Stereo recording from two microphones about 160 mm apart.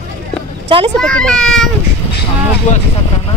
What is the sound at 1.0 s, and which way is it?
Speech, 5° left (ahead or behind).